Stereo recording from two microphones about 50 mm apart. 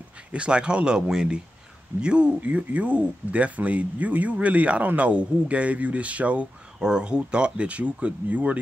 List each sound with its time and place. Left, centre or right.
0.3 s speech: right
6.8 s speech: centre